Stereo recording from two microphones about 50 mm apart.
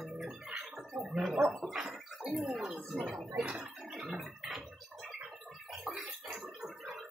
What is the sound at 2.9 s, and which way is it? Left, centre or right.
Speech, centre.